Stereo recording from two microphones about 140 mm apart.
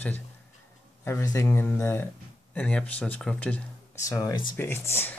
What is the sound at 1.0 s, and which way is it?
Speech, 20° left (ahead or behind).